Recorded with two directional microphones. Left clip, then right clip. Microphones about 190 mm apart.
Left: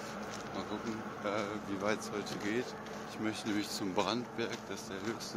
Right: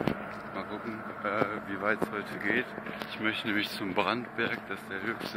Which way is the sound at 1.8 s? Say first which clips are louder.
Right 6 dB; 10° left (ahead or behind).